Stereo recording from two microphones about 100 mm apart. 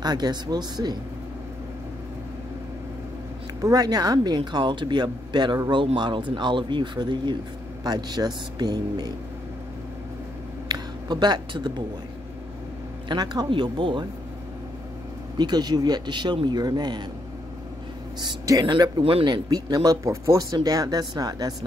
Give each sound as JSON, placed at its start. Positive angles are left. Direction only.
{"t": 0.0, "sound": "speech", "side_deg": -45}
{"t": 3.6, "sound": "speech", "side_deg": -40}
{"t": 10.7, "sound": "a sound", "side_deg": -45}
{"t": 13.1, "sound": "speech", "side_deg": -40}
{"t": 15.3, "sound": "speech", "side_deg": -45}
{"t": 18.2, "sound": "speech", "side_deg": -35}
{"t": 18.6, "sound": "speech", "side_deg": -45}